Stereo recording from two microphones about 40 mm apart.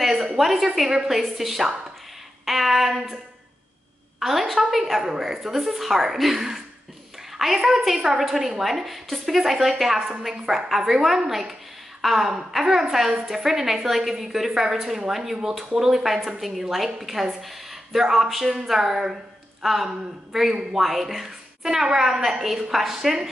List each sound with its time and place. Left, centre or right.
0.0 s a sound: centre
0.7 s a woman's voice: centre
4.2 s a woman's voice: centre
12.3 s a woman's voice: centre